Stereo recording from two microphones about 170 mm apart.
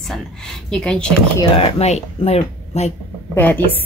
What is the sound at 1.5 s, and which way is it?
Speech, 35° left (ahead or behind).